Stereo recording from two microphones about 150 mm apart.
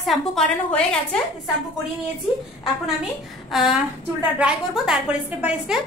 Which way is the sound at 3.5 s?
5° right (ahead or behind).